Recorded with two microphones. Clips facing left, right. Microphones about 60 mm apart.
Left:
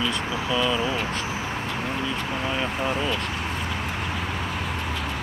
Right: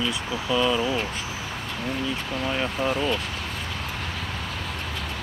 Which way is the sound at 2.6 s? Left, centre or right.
Centre.